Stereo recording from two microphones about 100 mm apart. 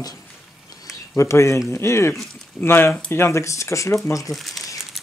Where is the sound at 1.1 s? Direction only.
30° left (ahead or behind).